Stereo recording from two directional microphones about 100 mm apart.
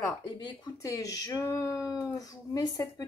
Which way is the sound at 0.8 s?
35° left (ahead or behind).